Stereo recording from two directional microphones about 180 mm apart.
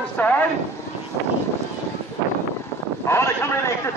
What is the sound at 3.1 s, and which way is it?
Speech, 15° left (ahead or behind).